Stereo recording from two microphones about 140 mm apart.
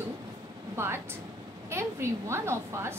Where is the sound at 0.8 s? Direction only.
20° right (ahead or behind).